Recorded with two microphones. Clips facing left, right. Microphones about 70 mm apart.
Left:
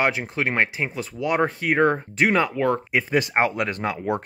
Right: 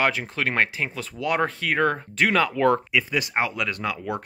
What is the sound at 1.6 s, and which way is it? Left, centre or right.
Speech, centre.